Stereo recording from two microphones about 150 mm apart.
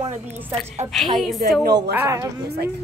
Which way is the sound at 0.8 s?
25° right (ahead or behind).